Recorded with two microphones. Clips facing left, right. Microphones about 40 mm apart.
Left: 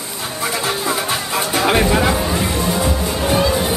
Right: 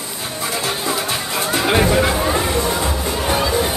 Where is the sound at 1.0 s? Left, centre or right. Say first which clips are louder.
Left 2 dB; centre.